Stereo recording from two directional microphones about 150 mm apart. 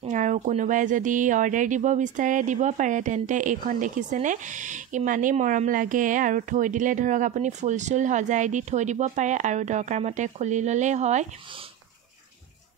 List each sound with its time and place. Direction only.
0.0 s speech: 55° right (ahead or behind)